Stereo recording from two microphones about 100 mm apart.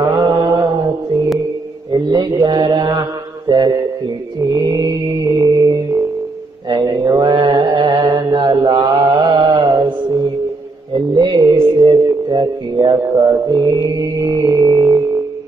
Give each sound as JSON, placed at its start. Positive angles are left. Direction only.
{"t": 0.0, "sound": "mantra", "side_deg": -40}
{"t": 1.9, "sound": "mantra", "side_deg": -45}
{"t": 11.1, "sound": "a sound", "side_deg": -45}